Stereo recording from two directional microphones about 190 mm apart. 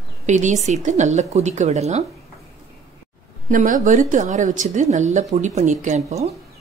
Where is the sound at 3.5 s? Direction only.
40° right (ahead or behind).